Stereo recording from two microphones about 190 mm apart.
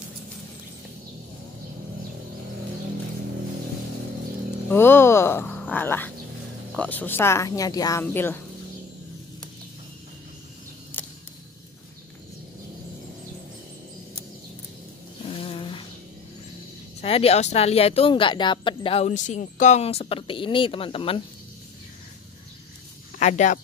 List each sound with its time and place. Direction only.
4.6 s speech: 10° left (ahead or behind)
10.9 s arrow: 10° left (ahead or behind)
15.2 s a sound: 30° left (ahead or behind)
17.0 s speech: 30° left (ahead or behind)
23.1 s speech: 40° left (ahead or behind)